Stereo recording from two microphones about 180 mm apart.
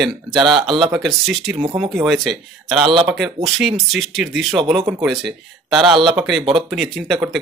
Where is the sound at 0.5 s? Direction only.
25° right (ahead or behind).